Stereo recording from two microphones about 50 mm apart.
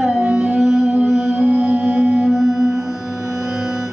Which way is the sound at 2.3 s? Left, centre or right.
Centre.